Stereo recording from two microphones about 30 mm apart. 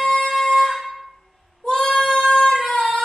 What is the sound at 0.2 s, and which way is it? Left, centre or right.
Air horn, centre.